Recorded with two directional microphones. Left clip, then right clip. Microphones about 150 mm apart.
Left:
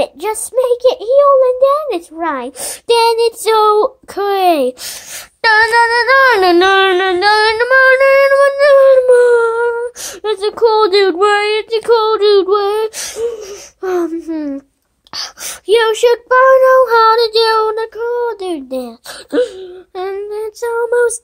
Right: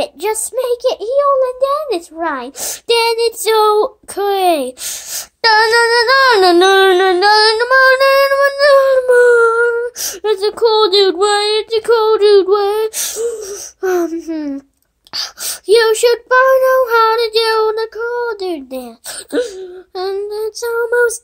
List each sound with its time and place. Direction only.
0.0 s a child's voice: 30° left (ahead or behind)
5.1 s female singing: 15° left (ahead or behind)
15.1 s a child's voice: 25° left (ahead or behind)
20.0 s female singing: 30° left (ahead or behind)